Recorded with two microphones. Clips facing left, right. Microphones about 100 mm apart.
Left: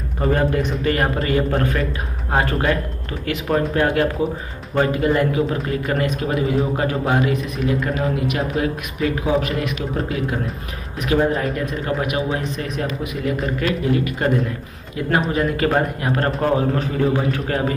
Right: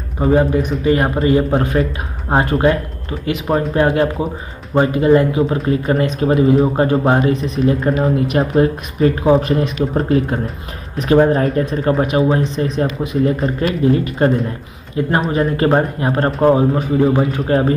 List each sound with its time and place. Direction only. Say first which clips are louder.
0.2 s a man's voice: right 5 dB; 10° right (ahead or behind); by 17.7 s 30° right (ahead or behind)